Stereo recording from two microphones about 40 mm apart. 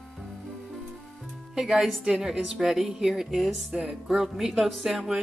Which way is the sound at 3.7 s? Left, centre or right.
Centre.